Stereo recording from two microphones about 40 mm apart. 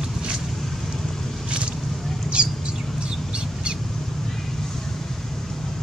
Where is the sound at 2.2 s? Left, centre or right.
Right.